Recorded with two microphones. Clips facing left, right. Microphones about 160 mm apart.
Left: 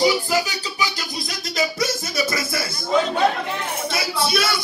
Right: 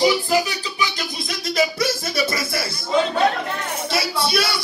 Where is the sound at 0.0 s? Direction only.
Centre (ahead or behind).